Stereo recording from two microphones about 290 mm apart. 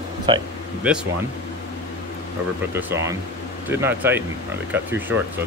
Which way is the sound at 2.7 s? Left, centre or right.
Centre.